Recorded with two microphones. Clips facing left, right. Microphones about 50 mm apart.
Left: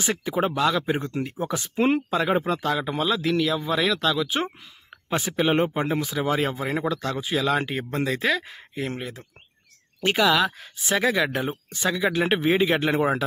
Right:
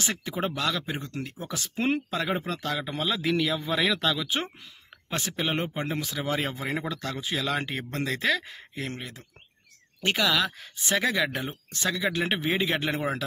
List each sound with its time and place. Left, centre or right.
0.0 s speech: centre
0.8 s speech: left
1.8 s speech: centre
3.2 s speech: centre
5.1 s speech: centre
5.9 s speech: centre